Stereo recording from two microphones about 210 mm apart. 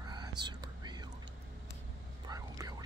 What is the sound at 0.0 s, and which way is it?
Whispering, 20° right (ahead or behind).